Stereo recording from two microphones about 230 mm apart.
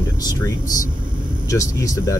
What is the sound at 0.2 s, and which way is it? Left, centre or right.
Speech, centre.